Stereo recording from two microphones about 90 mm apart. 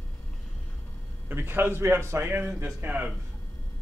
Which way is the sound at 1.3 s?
25° right (ahead or behind).